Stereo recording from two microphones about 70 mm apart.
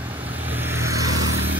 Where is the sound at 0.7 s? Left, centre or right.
Right.